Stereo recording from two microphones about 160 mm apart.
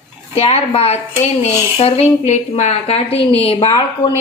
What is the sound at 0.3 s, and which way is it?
Speech, 40° left (ahead or behind).